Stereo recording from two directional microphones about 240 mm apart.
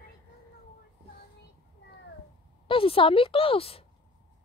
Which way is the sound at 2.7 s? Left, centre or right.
Left.